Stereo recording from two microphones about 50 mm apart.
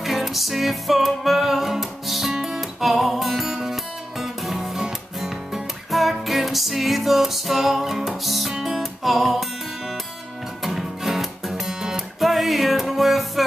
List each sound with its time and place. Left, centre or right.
0.0 s music: centre
10.6 s music: centre